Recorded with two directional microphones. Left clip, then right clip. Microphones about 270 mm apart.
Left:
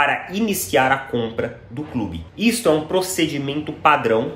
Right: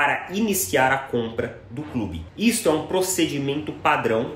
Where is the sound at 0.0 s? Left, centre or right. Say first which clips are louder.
Left 3 dB; centre.